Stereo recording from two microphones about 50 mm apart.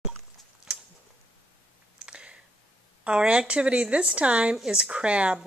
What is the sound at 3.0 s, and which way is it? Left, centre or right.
A woman's voice, right.